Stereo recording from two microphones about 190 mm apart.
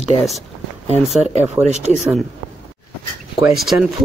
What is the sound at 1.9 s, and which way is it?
Speech, centre (ahead or behind).